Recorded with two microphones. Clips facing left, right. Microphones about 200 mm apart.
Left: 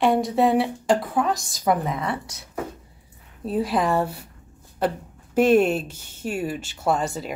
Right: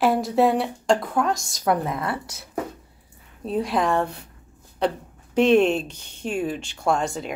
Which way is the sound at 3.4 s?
Centre (ahead or behind).